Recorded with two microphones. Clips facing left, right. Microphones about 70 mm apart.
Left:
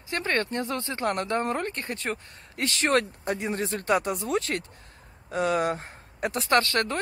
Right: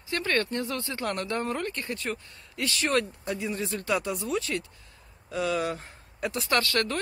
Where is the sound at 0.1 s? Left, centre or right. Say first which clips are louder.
Even; left.